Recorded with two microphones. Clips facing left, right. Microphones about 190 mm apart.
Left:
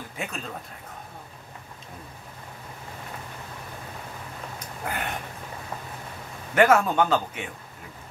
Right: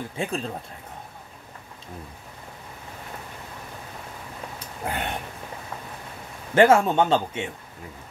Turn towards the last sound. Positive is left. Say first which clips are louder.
# right 2 dB
turn(degrees=-25)  # may be behind; listen again after turning